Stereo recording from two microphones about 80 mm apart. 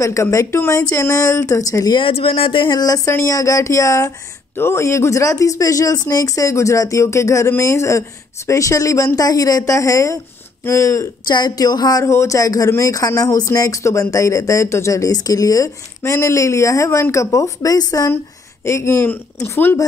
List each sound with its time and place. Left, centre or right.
0.0 s speech: left
2.5 s speech: left
3.1 s speech: left
4.6 s speech: left
11.2 s a woman's voice: left
12.0 s speech: left
18.7 s speech: left